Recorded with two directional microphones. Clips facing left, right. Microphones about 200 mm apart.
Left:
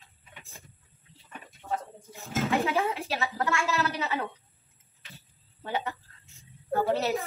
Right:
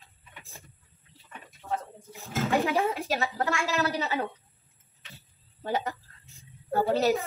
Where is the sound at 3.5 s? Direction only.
15° right (ahead or behind).